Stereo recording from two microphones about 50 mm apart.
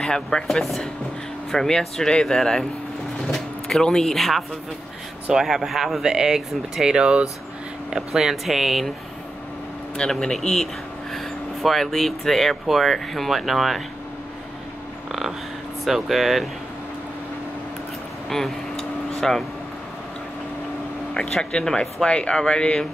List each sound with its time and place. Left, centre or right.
0.0 s speech: centre
5.3 s speech: centre
7.9 s speech: centre
9.9 s speech: centre
15.8 s speech: centre
18.3 s a sound: centre
21.1 s speech: centre